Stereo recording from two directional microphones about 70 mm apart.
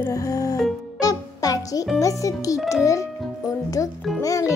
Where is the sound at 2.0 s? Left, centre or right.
Left.